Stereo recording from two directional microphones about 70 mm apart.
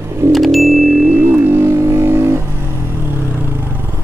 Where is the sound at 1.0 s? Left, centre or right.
Right.